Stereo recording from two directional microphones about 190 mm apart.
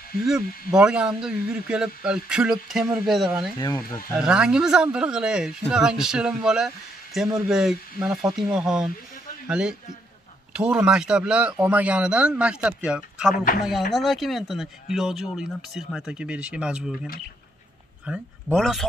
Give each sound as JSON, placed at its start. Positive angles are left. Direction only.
{"t": 0.2, "sound": "speech", "side_deg": -5}
{"t": 3.5, "sound": "speech", "side_deg": 15}
{"t": 4.2, "sound": "speech", "side_deg": -5}